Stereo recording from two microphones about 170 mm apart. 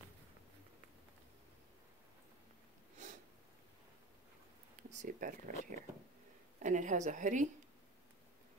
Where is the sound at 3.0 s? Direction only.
45° right (ahead or behind).